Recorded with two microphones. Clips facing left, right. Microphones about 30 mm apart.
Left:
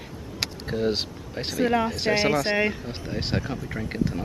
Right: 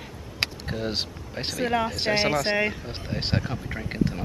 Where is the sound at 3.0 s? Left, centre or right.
Centre.